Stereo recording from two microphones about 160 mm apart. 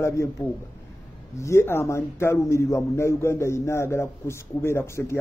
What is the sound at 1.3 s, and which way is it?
A man's voice, 20° left (ahead or behind).